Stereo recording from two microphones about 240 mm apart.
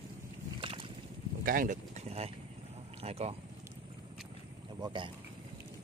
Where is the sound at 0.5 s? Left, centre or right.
Right.